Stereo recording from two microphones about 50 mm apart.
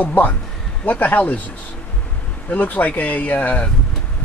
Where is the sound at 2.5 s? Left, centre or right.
Left.